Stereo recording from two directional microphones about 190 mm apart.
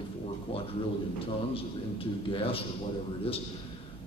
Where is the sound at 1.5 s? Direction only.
30° left (ahead or behind).